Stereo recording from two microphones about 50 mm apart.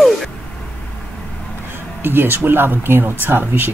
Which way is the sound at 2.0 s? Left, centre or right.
Right.